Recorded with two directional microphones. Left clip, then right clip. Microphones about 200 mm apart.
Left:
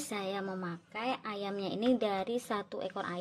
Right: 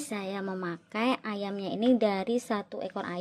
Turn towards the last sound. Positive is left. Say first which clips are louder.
# right 2 dB
turn(degrees=-15)  # may be behind; listen again after turning